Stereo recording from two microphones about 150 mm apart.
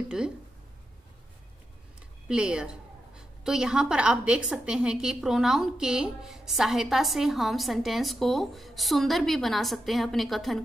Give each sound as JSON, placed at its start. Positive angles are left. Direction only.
{"t": 2.2, "sound": "a woman's voice", "side_deg": -5}